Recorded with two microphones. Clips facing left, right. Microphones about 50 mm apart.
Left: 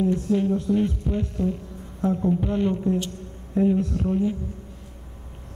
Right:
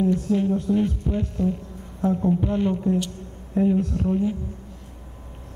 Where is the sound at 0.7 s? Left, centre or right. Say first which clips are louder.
Even; centre.